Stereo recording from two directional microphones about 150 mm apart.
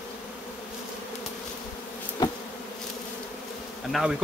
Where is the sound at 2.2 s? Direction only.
25° left (ahead or behind).